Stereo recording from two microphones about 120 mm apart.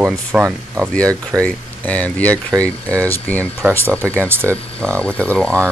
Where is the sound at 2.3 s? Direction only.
25° right (ahead or behind).